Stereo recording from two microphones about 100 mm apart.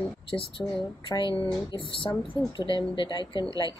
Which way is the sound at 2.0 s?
55° left (ahead or behind).